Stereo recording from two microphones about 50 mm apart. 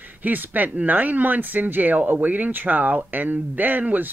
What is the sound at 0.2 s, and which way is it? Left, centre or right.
Speech, right.